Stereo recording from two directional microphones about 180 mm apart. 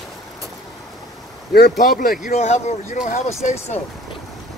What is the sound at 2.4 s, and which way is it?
Speech, 35° left (ahead or behind).